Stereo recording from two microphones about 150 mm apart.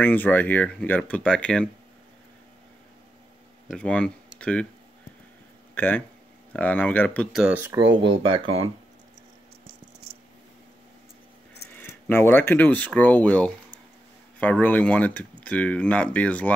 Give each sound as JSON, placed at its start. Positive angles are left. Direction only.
{"t": 0.0, "sound": "speech", "side_deg": 10}
{"t": 3.7, "sound": "speech", "side_deg": 5}
{"t": 5.8, "sound": "speech", "side_deg": 10}
{"t": 7.3, "sound": "speech", "side_deg": -10}
{"t": 8.0, "sound": "speech", "side_deg": -35}
{"t": 11.7, "sound": "speech", "side_deg": 15}